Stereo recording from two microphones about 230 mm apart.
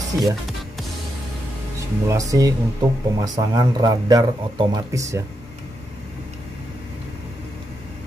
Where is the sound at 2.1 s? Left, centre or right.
Centre.